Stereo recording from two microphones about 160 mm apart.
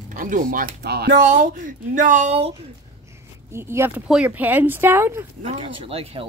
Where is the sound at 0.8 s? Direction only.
85° right.